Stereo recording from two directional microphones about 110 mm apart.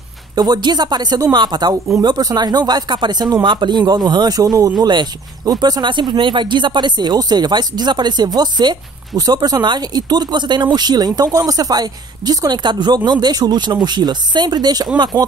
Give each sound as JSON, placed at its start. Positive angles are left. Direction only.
{"t": 0.4, "sound": "speech", "side_deg": -40}